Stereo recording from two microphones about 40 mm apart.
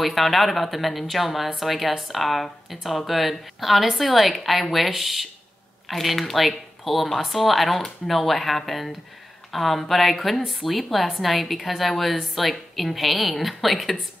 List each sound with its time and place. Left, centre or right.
0.0 s a woman's voice: centre